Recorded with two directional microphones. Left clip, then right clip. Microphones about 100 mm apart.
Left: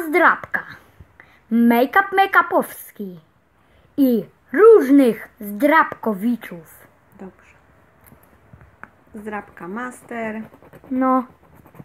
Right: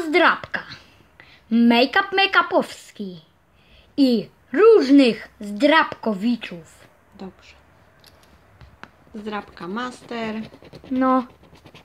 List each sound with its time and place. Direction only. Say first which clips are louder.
0.0 s a sound: left 2 dB; 40° left (ahead or behind)
0.5 s throat clearing: left 4 dB; 40° left (ahead or behind)
1.5 s a woman's voice: left 1 dB; 45° left (ahead or behind)
9.2 s speech: even; 15° right (ahead or behind)
11.0 s speech: left 1 dB; 25° left (ahead or behind)